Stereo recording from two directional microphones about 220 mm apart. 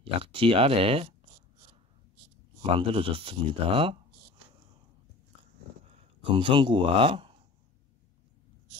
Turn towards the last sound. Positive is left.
turn(degrees=-25)  # may be behind; listen again after turning